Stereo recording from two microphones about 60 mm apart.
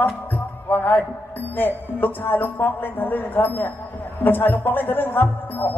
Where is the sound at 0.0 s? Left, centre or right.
Left.